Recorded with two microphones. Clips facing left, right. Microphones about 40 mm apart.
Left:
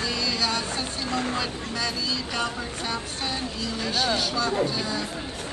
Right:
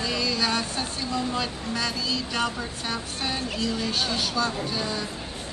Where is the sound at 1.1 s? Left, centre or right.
Left.